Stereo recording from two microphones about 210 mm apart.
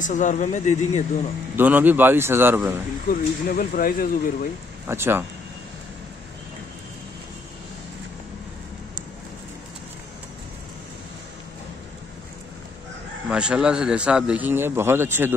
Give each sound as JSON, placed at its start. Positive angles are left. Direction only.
{"t": 0.0, "sound": "speech", "side_deg": 35}
{"t": 1.6, "sound": "a man's voice", "side_deg": -10}
{"t": 3.1, "sound": "speech", "side_deg": 40}
{"t": 4.8, "sound": "a man's voice", "side_deg": -10}
{"t": 13.3, "sound": "speech", "side_deg": -5}